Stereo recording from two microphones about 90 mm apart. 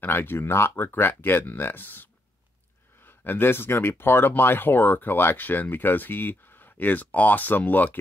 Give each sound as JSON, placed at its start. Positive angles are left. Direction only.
{"t": 0.0, "sound": "speech", "side_deg": 25}